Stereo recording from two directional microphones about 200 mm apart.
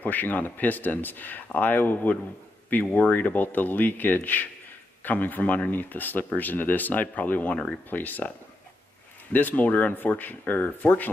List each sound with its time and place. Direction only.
0.0 s speech: 10° left (ahead or behind)
9.3 s speech: 10° left (ahead or behind)